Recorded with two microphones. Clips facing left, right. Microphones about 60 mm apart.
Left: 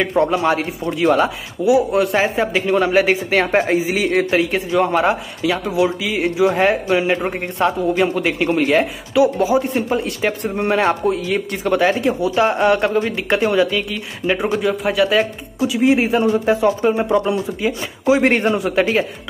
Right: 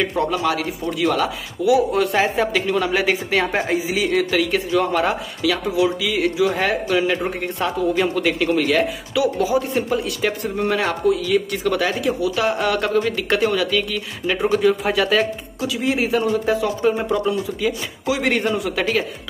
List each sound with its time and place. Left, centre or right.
0.0 s speech: left
14.6 s speech: centre
15.6 s speech: left